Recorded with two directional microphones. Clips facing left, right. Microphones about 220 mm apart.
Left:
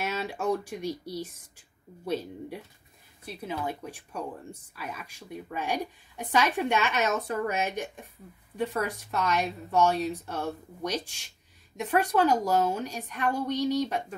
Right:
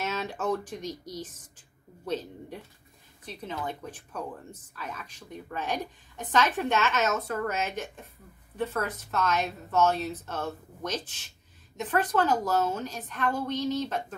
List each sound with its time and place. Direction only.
0.0 s a woman's voice: 10° left (ahead or behind)